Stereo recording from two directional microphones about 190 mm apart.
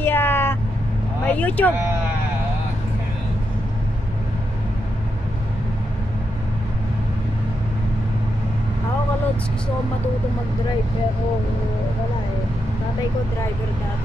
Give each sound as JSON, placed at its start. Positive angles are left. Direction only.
{"t": 0.0, "sound": "vehicle", "side_deg": 10}
{"t": 1.2, "sound": "speech", "side_deg": 5}